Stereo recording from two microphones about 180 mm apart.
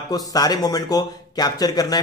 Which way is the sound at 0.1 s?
20° left (ahead or behind).